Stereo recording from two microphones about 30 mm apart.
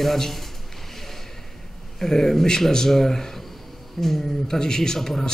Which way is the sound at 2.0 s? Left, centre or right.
Centre.